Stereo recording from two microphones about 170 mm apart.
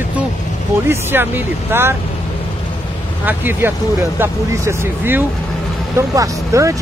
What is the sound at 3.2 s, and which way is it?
Speech, 10° right (ahead or behind).